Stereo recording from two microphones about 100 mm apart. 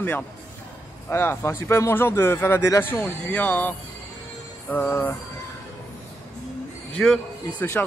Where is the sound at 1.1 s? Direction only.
25° left (ahead or behind).